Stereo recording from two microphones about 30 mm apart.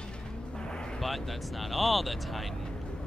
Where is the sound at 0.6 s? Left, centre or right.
Left.